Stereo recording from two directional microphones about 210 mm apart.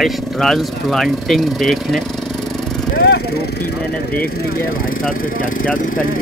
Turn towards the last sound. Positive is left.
turn(degrees=40)  # may be behind; listen again after turning